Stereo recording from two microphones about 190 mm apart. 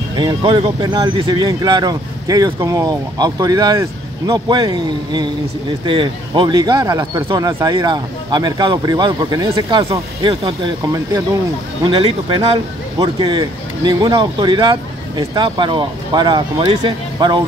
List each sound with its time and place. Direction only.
0.1 s a man's voice: 25° right (ahead or behind)
11.8 s a man's voice: 25° right (ahead or behind)